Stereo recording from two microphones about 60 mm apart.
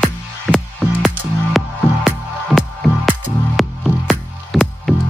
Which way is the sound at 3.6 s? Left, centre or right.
Centre.